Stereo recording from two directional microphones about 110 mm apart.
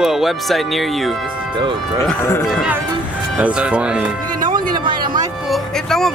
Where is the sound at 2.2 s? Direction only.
25° left (ahead or behind).